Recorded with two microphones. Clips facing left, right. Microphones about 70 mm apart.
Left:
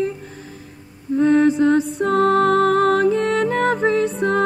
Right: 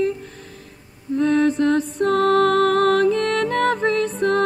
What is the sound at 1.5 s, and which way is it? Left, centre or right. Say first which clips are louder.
Music: left 2 dB; centre.